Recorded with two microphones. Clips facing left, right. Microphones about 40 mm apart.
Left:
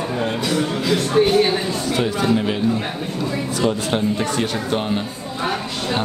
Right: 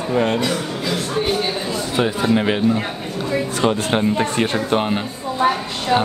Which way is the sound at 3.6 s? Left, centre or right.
Right.